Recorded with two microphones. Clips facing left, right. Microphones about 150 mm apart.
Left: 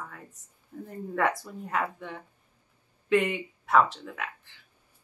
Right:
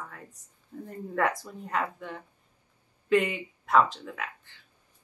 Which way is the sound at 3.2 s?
5° right (ahead or behind).